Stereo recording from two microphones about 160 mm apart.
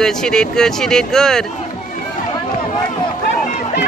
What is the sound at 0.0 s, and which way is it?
Speech, 5° left (ahead or behind).